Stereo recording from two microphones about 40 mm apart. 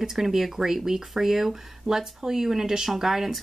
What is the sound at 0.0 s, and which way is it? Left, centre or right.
Speech, centre.